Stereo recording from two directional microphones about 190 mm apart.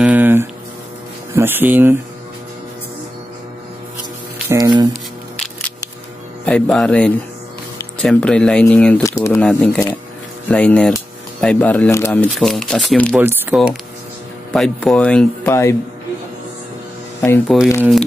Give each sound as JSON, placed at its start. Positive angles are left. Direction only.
{"t": 0.0, "sound": "a sound", "side_deg": -10}
{"t": 1.3, "sound": "speech", "side_deg": -10}
{"t": 4.5, "sound": "a sound", "side_deg": -20}
{"t": 6.4, "sound": "speech", "side_deg": 5}
{"t": 13.1, "sound": "speech", "side_deg": -10}
{"t": 14.5, "sound": "speech", "side_deg": 5}
{"t": 17.2, "sound": "speech", "side_deg": 5}